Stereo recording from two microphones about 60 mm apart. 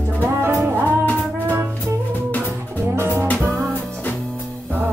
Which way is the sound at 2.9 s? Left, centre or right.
Right.